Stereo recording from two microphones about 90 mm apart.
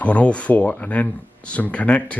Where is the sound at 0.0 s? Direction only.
15° left (ahead or behind).